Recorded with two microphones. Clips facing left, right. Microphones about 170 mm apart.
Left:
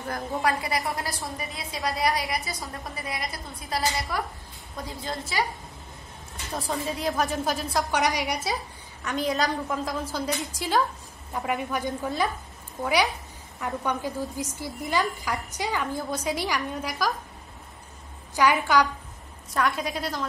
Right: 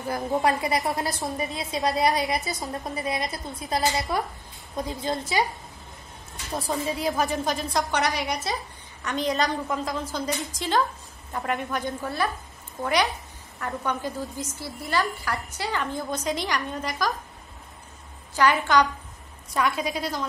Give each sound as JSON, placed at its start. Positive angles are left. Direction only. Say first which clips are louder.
{"t": 0.4, "sound": "a woman's voice", "louder": "right 1 dB", "side_deg": -25}
{"t": 6.5, "sound": "a woman's voice", "louder": "right 2 dB", "side_deg": 0}
{"t": 18.3, "sound": "a woman's voice", "louder": "right 1 dB", "side_deg": 15}
{"t": 19.5, "sound": "a woman's voice", "louder": "right 1 dB", "side_deg": 0}